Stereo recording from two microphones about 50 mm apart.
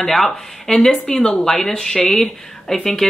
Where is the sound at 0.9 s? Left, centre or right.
Centre.